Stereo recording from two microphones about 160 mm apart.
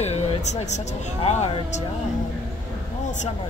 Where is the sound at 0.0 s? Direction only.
45° left (ahead or behind).